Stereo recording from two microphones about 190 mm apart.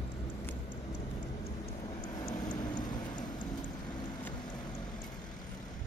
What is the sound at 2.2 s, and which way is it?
Vehicle, 20° left (ahead or behind).